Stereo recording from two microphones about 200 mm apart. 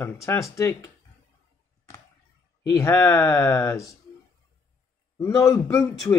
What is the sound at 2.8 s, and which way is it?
Speech, 15° left (ahead or behind).